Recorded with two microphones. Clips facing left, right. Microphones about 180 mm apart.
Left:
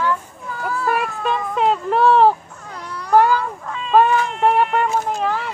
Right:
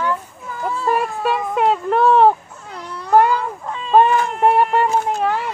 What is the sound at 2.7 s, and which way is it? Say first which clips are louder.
Baby cry: right 1 dB; 25° right (ahead or behind).